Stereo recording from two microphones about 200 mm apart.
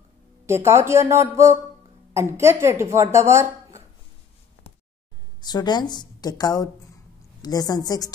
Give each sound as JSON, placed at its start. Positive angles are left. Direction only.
{"t": 0.5, "sound": "speech", "side_deg": -15}
{"t": 5.4, "sound": "a woman's voice", "side_deg": 20}